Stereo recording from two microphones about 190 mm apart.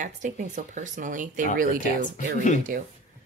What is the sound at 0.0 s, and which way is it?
A woman's voice, 40° right (ahead or behind).